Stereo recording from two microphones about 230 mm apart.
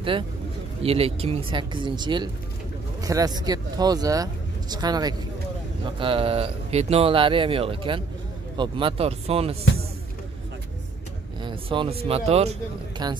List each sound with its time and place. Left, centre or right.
0.8 s speech: right
11.4 s speech: right